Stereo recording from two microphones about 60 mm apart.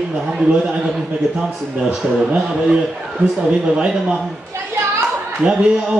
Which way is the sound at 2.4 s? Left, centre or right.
Centre.